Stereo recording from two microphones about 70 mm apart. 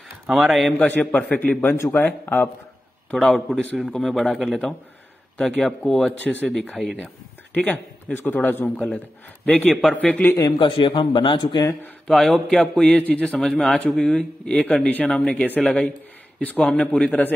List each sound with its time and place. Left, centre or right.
0.3 s a man's voice: centre
0.7 s a man's voice: left
3.1 s a man's voice: centre
5.7 s speech: centre
7.5 s a man's voice: left
8.7 s a man's voice: centre
9.9 s a man's voice: left
10.4 s speech: left
12.1 s speech: centre
13.4 s a man's voice: centre